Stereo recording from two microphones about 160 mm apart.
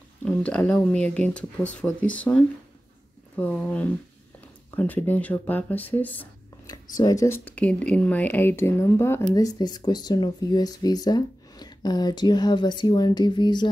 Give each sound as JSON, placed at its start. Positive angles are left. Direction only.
{"t": 0.2, "sound": "speech", "side_deg": 5}
{"t": 7.0, "sound": "speech", "side_deg": 20}